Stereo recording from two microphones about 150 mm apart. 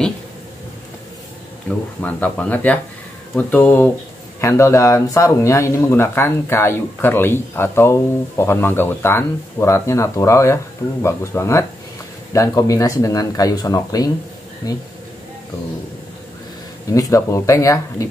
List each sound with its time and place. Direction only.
2.0 s speech: 10° left (ahead or behind)
16.9 s speech: 20° left (ahead or behind)